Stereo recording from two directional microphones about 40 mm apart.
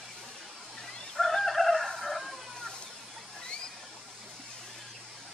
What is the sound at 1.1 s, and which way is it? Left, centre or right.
Chicken, centre.